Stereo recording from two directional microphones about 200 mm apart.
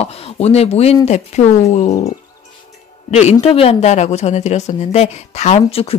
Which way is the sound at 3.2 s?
30° left (ahead or behind).